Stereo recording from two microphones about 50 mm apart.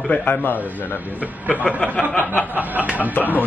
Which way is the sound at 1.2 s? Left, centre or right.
Right.